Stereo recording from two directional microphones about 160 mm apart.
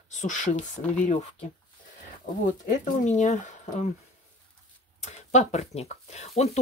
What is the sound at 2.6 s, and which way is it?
Speech, 50° left (ahead or behind).